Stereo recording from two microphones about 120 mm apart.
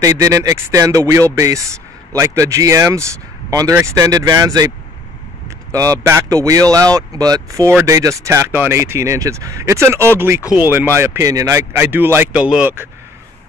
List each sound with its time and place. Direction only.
0.0 s speech: 30° right (ahead or behind)
5.7 s speech: 30° right (ahead or behind)
11.7 s speech: 15° right (ahead or behind)